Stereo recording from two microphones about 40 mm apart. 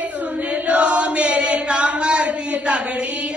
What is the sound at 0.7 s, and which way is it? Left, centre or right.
Chant, right.